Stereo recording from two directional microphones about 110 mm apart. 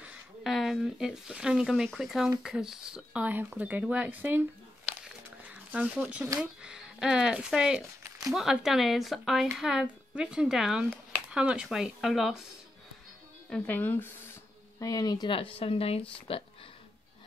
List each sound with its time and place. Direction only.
0.0 s a sound: 10° right (ahead or behind)
0.5 s speech: centre (ahead or behind)
4.8 s a sound: 10° right (ahead or behind)
6.4 s speech: 5° right (ahead or behind)
13.5 s speech: 15° left (ahead or behind)
14.8 s speech: 35° left (ahead or behind)
15.2 s speech: 55° left (ahead or behind)